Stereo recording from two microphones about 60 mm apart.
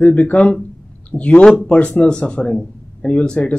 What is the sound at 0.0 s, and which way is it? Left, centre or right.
Speech, left.